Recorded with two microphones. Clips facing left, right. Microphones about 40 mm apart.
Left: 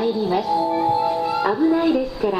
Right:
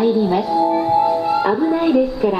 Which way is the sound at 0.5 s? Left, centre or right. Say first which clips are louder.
Right 3 dB; right.